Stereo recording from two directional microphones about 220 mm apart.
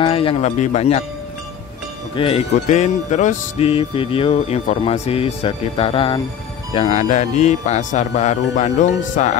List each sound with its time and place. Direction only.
0.0 s music: 25° left (ahead or behind)
2.1 s music: 25° left (ahead or behind)